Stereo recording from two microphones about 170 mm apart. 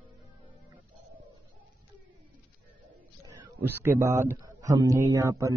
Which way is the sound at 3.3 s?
15° right (ahead or behind).